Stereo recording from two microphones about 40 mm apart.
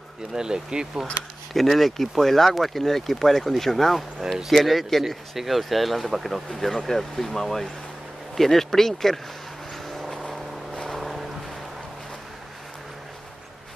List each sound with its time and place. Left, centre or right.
0.3 s speech: centre
1.5 s speech: centre
9.8 s vehicle: centre